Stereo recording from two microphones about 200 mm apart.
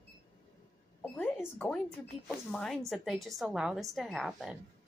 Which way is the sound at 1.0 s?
5° left (ahead or behind).